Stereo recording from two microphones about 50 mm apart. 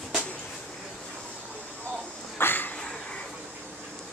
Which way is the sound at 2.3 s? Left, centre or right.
Left.